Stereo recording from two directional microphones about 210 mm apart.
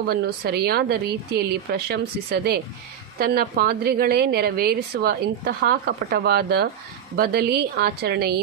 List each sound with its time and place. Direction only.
0.1 s a woman's voice: 50° right (ahead or behind)